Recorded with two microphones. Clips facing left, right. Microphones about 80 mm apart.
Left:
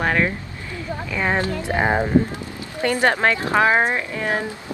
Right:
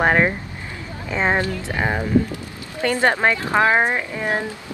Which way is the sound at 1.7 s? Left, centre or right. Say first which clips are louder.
Left 3 dB; left.